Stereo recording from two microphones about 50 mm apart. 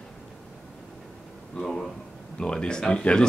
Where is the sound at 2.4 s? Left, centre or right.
Centre.